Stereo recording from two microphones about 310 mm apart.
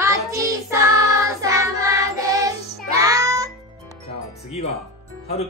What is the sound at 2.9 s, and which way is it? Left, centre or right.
Music, centre.